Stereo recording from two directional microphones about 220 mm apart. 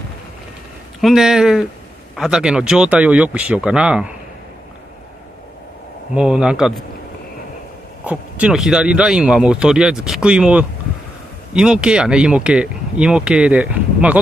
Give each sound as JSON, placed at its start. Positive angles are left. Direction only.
{"t": 1.0, "sound": "speech", "side_deg": 0}
{"t": 6.1, "sound": "speech", "side_deg": -5}
{"t": 8.0, "sound": "speech", "side_deg": -5}